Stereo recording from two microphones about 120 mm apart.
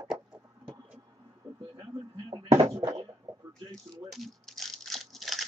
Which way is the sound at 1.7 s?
45° right (ahead or behind).